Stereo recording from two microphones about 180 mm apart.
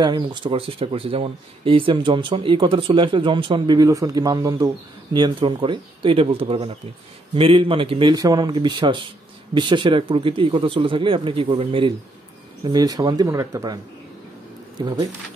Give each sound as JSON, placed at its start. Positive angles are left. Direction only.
{"t": 0.0, "sound": "speech", "side_deg": -25}
{"t": 14.8, "sound": "speech", "side_deg": -25}